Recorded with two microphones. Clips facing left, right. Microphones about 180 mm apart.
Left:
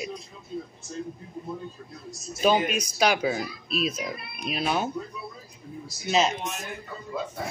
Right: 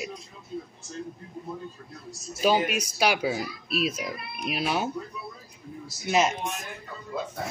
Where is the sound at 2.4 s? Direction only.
5° right (ahead or behind).